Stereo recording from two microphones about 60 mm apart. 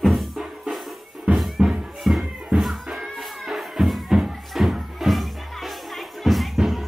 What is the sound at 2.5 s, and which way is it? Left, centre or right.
Music, right.